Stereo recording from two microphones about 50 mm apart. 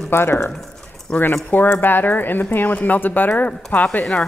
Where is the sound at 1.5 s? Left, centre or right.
Left.